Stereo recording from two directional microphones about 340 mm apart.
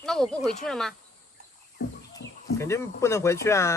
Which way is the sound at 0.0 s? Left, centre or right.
Centre.